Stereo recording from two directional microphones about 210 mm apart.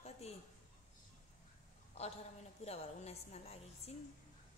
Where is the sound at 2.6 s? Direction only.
30° left (ahead or behind).